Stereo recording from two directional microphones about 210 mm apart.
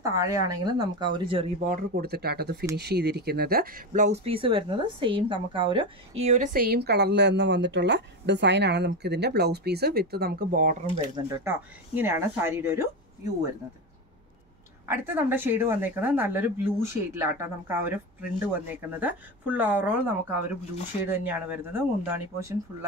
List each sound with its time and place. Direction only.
0.0 s speech: 15° right (ahead or behind)
1.7 s speech: 45° right (ahead or behind)
11.1 s speech: 15° right (ahead or behind)
14.9 s speech: 10° right (ahead or behind)